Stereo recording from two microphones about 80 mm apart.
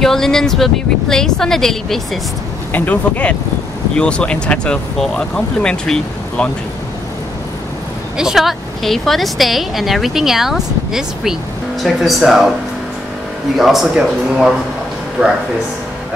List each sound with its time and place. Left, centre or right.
0.0 s a woman's voice: centre
2.7 s speech: left
8.2 s a woman's voice: centre
13.6 s a woman's voice: centre